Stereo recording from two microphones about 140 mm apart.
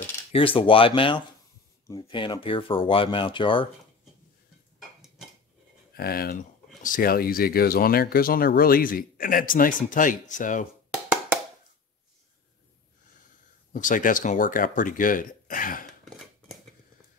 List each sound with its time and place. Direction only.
0.3 s speech: 40° left (ahead or behind)
5.9 s speech: 90° left; by 10.7 s 65° left (ahead or behind)
10.9 s hands: 10° right (ahead or behind)
13.7 s speech: 70° left (ahead or behind)